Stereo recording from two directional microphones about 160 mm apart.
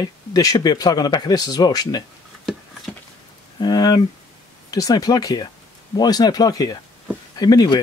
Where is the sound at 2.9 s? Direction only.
5° left (ahead or behind).